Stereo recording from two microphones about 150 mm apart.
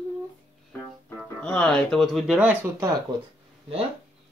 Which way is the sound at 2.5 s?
15° right (ahead or behind).